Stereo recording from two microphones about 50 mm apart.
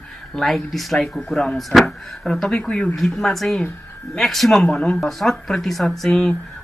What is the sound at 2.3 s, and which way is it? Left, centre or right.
Speech, centre.